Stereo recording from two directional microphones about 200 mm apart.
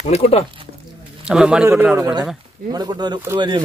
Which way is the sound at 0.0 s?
30° left (ahead or behind).